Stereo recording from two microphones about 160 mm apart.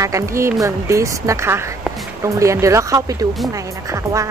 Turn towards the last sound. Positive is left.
turn(degrees=-20)  # may be behind; listen again after turning